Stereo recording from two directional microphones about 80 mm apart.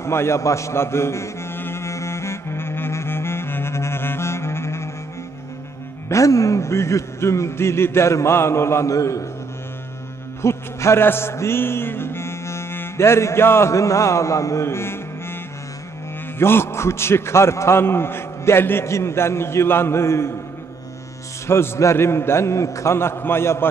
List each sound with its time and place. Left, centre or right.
0.0 s chant: left
6.0 s a man's voice: left
10.4 s music: left
16.3 s a man's voice: left
21.5 s a man's voice: left